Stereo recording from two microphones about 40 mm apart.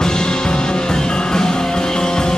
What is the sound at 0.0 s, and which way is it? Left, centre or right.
Music, centre.